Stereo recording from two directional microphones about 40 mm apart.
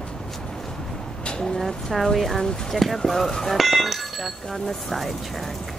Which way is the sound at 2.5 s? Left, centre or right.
Centre.